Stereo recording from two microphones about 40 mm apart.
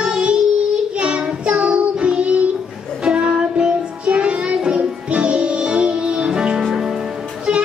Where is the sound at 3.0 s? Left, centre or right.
Right.